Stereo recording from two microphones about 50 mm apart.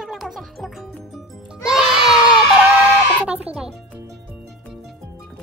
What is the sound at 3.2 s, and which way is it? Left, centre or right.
Music, right.